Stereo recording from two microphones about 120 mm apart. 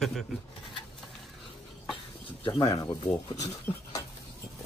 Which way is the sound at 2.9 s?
35° left (ahead or behind).